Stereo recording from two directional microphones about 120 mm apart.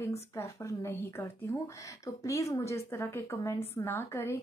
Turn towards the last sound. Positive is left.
turn(degrees=20)  # may be behind; listen again after turning